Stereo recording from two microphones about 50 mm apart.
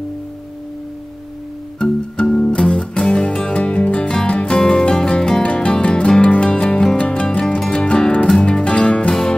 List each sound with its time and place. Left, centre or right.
2.2 s music: centre